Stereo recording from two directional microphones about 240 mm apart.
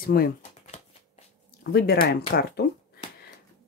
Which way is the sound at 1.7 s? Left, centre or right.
Left.